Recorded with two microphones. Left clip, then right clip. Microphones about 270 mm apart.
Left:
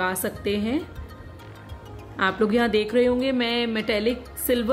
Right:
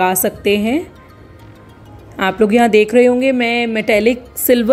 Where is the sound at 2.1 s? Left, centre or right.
Centre.